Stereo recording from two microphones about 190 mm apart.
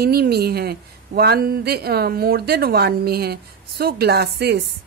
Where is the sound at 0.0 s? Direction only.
55° right (ahead or behind).